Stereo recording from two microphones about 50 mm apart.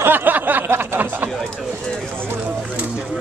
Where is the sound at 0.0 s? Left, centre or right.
Right.